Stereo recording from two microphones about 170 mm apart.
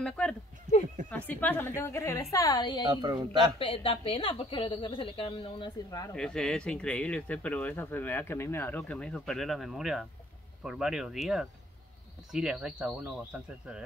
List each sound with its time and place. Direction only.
0.0 s a woman's voice: 5° left (ahead or behind); by 2.8 s 25° left (ahead or behind)
2.9 s a man's voice: 25° right (ahead or behind)
3.5 s a woman's voice: 30° left (ahead or behind)
6.1 s speech: 5° left (ahead or behind)